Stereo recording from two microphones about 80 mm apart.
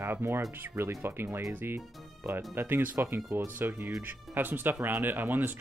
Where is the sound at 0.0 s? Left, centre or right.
Right.